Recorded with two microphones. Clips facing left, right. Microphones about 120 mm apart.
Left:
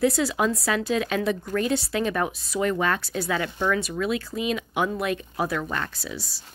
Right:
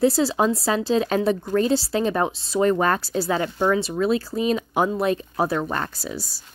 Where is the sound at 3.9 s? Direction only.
35° right (ahead or behind).